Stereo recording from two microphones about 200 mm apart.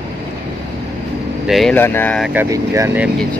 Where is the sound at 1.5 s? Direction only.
5° left (ahead or behind).